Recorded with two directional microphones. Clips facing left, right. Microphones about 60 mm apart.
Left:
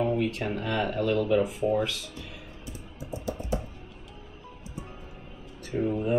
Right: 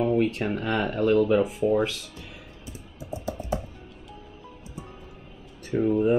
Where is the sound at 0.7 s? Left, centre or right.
Right.